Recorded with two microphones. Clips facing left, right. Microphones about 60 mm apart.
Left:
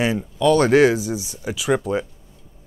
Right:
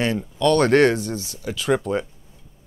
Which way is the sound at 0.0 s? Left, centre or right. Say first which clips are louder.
Left 2 dB; centre.